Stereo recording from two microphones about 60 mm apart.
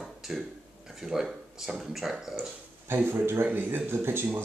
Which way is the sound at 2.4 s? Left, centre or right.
Right.